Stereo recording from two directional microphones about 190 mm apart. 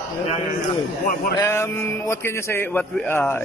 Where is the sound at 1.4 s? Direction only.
15° left (ahead or behind).